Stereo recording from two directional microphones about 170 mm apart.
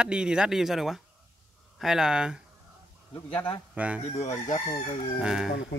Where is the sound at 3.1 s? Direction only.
10° left (ahead or behind).